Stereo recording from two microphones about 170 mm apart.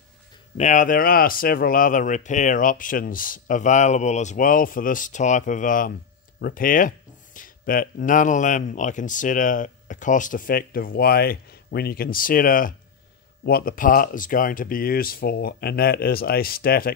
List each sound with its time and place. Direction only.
0.6 s speech: 45° left (ahead or behind)